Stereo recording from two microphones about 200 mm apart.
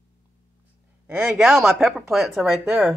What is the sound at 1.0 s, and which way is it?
Speech, 5° right (ahead or behind).